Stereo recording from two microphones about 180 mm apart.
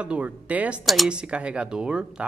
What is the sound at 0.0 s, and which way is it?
Speech, 5° right (ahead or behind).